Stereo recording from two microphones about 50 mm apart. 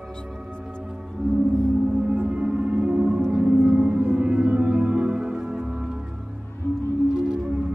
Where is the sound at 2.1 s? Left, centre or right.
Right.